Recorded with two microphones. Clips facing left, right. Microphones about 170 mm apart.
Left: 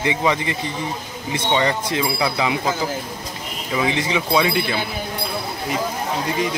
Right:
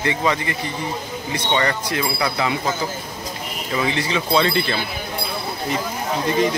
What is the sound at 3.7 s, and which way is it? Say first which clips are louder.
Speech: left 1 dB; 15° left (ahead or behind).